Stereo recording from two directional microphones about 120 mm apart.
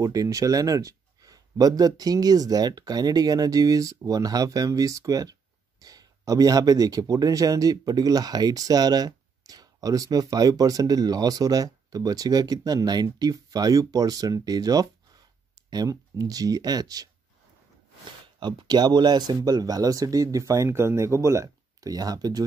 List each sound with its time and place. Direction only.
0.0 s speech: 30° right (ahead or behind)
18.4 s speech: 35° right (ahead or behind)